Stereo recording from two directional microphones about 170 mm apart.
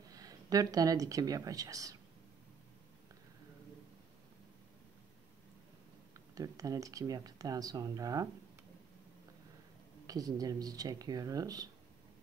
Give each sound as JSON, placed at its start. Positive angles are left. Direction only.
{"t": 0.1, "sound": "speech", "side_deg": -20}
{"t": 6.1, "sound": "speech", "side_deg": -20}
{"t": 10.0, "sound": "speech", "side_deg": -20}